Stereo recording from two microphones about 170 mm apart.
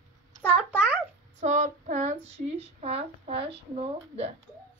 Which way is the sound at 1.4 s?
45° right (ahead or behind).